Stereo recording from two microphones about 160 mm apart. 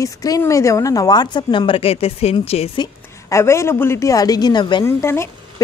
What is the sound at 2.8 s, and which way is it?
Speech, 20° left (ahead or behind).